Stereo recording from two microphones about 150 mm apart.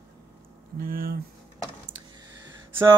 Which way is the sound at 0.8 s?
75° right (ahead or behind).